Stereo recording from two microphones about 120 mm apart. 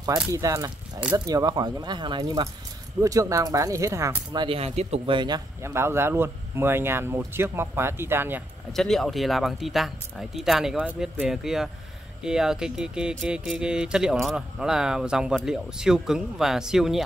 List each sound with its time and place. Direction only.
0.3 s speech: 30° right (ahead or behind)
4.4 s speech: 55° right (ahead or behind)
5.1 s speech: 40° right (ahead or behind)
5.6 s speech: 20° right (ahead or behind)
8.7 s speech: 5° left (ahead or behind)